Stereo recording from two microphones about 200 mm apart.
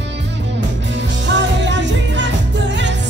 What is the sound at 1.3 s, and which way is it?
Music, 65° right (ahead or behind).